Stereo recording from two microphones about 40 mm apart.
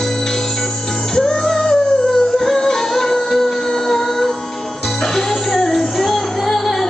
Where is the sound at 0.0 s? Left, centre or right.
Centre.